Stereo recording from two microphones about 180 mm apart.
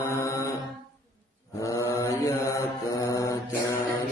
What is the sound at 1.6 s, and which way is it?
Mantra, 20° left (ahead or behind).